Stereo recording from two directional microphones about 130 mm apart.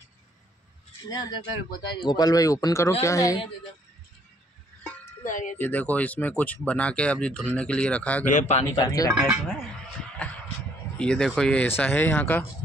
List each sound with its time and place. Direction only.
1.0 s speech: 30° left (ahead or behind)
5.2 s speech: 80° left
5.6 s speech: 10° left (ahead or behind)
8.3 s speech: 65° left (ahead or behind)
8.7 s speech: 30° left (ahead or behind)
9.1 s speech: 5° right (ahead or behind)
10.2 s speech: 10° left (ahead or behind)
11.6 s speech: 15° left (ahead or behind)